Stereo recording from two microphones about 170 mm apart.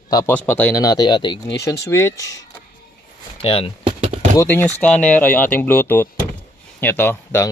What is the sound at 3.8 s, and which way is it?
Chopping, 40° right (ahead or behind).